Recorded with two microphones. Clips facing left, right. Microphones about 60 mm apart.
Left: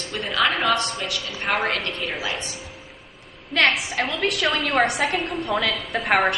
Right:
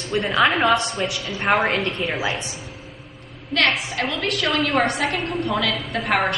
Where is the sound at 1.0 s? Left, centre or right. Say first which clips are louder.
Right 4 dB; right.